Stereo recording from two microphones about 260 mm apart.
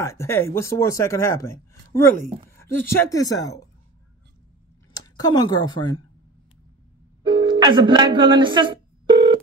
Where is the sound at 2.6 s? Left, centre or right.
Centre.